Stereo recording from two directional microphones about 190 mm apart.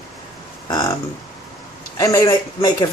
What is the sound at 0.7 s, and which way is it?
Speech, 20° left (ahead or behind).